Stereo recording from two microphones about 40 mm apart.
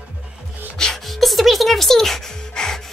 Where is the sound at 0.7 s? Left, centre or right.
Centre.